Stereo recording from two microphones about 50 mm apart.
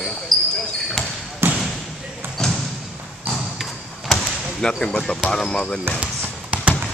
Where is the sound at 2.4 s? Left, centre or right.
Centre.